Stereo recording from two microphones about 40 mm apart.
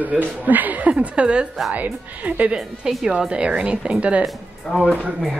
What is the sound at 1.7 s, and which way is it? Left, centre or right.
Speech, right.